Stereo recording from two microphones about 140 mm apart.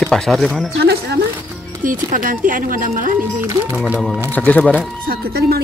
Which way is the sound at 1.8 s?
70° right (ahead or behind).